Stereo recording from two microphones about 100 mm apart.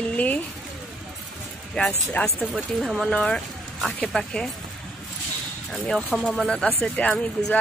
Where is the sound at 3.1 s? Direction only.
10° left (ahead or behind).